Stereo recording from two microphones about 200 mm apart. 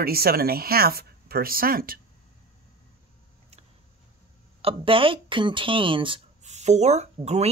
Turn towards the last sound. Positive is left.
turn(degrees=-35)  # may be behind; listen again after turning